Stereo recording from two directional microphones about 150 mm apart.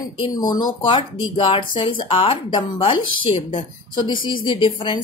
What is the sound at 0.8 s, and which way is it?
Speech, 35° left (ahead or behind).